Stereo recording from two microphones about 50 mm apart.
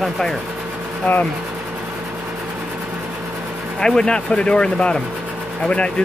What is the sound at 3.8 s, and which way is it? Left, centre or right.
Speech, centre.